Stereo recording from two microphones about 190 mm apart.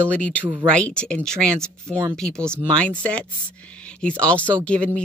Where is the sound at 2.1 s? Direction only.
5° left (ahead or behind).